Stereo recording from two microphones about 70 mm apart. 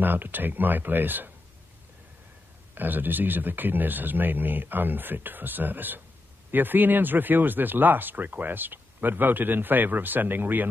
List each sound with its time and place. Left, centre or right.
0.0 s speech: right
2.7 s speech: right